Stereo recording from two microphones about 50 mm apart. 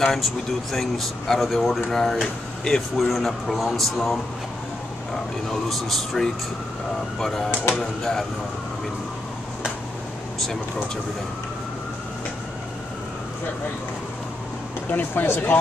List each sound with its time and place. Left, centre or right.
0.0 s speech: centre
5.5 s speech: centre
14.9 s speech: left